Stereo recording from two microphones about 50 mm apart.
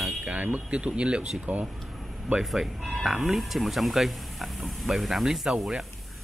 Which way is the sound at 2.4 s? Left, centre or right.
Centre.